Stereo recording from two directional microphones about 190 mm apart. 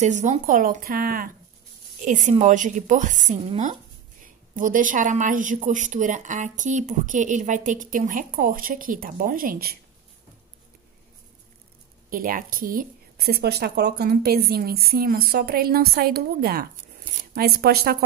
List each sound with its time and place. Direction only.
0.0 s a woman's voice: 40° right (ahead or behind)
12.1 s speech: 45° right (ahead or behind)